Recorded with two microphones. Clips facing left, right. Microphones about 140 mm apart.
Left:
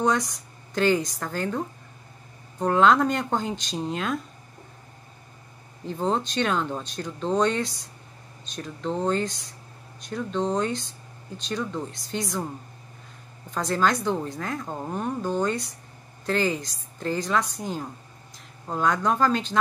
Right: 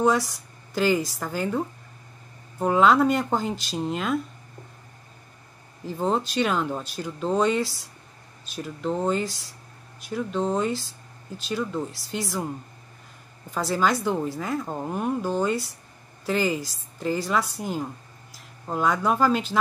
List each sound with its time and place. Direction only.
0.0 s speech: 5° right (ahead or behind)
2.6 s speech: 5° right (ahead or behind)
5.9 s speech: 5° right (ahead or behind)
13.5 s a woman's voice: 5° right (ahead or behind)